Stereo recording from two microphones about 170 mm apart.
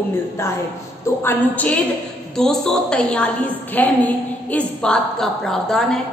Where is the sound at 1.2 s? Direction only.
10° left (ahead or behind).